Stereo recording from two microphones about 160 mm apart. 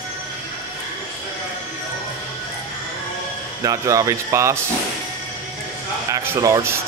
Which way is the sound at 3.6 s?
20° right (ahead or behind).